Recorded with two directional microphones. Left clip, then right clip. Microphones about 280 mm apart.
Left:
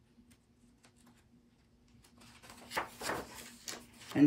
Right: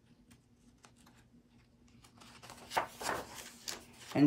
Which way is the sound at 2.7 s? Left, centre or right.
Centre.